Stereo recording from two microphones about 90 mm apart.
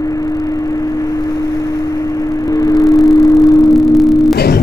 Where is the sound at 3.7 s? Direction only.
Centre (ahead or behind).